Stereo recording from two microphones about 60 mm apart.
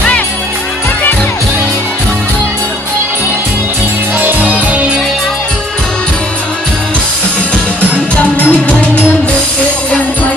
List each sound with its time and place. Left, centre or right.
4.2 s music: right
8.2 s music: left